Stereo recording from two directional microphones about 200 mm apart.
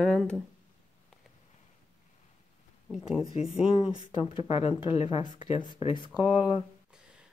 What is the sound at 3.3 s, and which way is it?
Speech, 30° left (ahead or behind).